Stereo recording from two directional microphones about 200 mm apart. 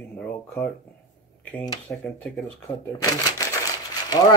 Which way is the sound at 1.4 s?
10° left (ahead or behind).